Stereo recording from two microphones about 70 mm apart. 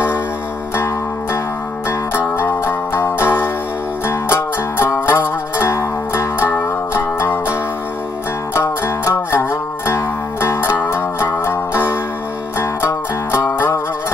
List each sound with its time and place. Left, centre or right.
1.9 s music: left
8.5 s music: left